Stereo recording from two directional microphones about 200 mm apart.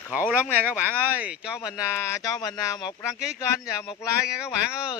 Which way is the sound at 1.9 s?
15° left (ahead or behind).